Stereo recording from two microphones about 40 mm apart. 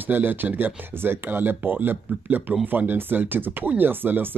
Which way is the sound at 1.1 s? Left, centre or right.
Right.